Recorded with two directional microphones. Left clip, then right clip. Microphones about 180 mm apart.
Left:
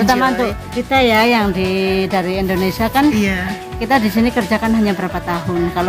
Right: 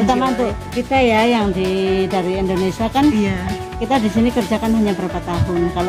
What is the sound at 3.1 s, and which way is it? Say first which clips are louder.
Speech: left 2 dB; 15° right (ahead or behind).